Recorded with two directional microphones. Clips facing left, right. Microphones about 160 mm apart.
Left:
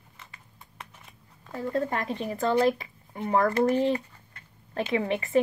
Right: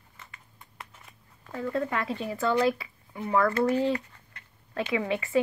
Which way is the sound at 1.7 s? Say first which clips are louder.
Left 1 dB; 35° left (ahead or behind).